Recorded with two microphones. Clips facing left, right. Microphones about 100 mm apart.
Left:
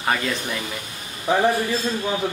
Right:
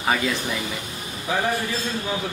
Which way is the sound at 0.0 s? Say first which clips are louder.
Right 1 dB; centre (ahead or behind).